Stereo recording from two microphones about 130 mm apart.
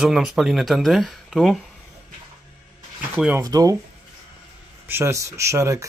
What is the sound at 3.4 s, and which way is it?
Speech, 25° right (ahead or behind).